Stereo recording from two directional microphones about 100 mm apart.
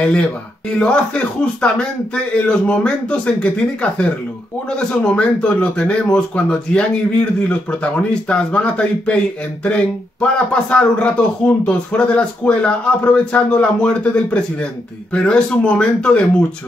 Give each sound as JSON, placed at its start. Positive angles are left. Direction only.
{"t": 0.0, "sound": "speech", "side_deg": 15}